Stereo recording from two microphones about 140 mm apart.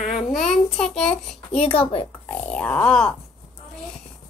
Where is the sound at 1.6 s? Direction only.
40° left (ahead or behind).